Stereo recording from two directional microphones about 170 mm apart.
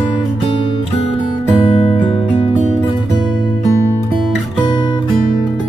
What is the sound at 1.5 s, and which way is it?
Music, 30° left (ahead or behind).